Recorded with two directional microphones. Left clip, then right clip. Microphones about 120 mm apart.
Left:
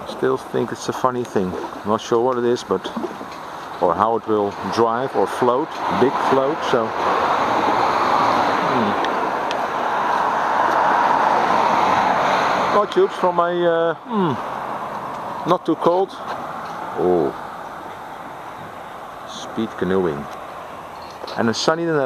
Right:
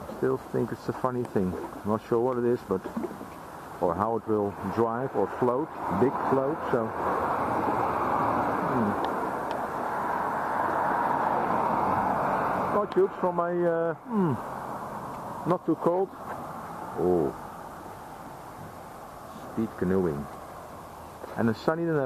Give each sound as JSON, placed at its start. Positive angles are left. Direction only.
{"t": 0.2, "sound": "speech", "side_deg": 30}
{"t": 1.9, "sound": "speech", "side_deg": 40}
{"t": 3.8, "sound": "speech", "side_deg": 35}
{"t": 4.9, "sound": "a sound", "side_deg": 35}
{"t": 9.6, "sound": "vehicle", "side_deg": 35}
{"t": 13.0, "sound": "speech", "side_deg": 40}
{"t": 16.9, "sound": "speech", "side_deg": 40}
{"t": 19.8, "sound": "speech", "side_deg": 35}
{"t": 21.4, "sound": "speech", "side_deg": 30}